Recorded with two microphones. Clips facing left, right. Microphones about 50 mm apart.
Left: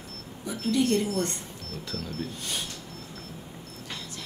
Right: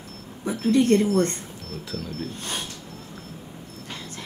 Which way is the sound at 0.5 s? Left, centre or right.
Right.